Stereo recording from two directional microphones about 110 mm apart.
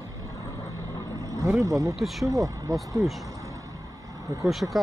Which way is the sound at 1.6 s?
30° right (ahead or behind).